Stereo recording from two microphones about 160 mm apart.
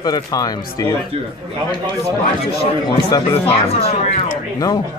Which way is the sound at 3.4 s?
40° left (ahead or behind).